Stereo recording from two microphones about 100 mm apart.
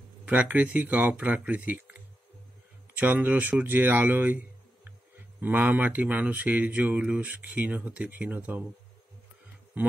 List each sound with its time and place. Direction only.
0.2 s speech: 15° right (ahead or behind)
5.4 s speech: 15° right (ahead or behind)
9.8 s speech: 15° right (ahead or behind)